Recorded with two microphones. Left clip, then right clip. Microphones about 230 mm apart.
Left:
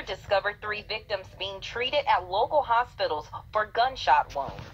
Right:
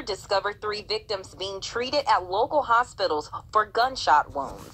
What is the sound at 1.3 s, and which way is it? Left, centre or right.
A woman's voice, right.